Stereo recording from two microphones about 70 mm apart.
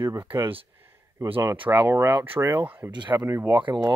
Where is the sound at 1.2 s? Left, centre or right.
Right.